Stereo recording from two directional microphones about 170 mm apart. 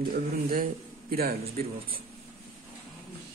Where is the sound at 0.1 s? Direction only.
60° right (ahead or behind).